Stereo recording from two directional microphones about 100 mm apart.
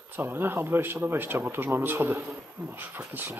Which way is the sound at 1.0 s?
20° right (ahead or behind).